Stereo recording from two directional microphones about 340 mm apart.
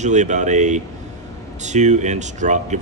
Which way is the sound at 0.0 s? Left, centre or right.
Right.